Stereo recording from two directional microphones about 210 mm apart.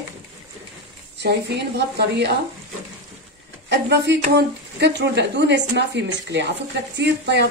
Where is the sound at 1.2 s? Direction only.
55° right (ahead or behind).